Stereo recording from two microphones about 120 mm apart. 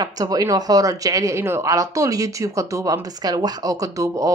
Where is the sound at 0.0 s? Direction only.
30° right (ahead or behind).